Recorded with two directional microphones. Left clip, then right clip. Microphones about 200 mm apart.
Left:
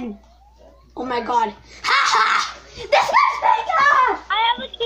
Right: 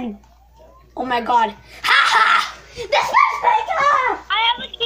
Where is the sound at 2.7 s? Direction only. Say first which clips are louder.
Left 1 dB; 45° left (ahead or behind).